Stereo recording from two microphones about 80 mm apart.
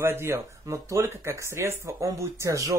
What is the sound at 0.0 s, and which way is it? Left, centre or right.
Speech, right.